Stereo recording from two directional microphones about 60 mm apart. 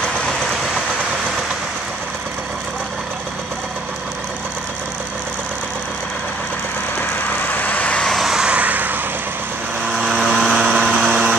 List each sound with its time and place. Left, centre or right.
7.4 s vehicle: left
8.2 s vehicle: centre
8.5 s vehicle: right
9.9 s vehicle: centre
10.5 s vehicle: centre
10.9 s a sound: centre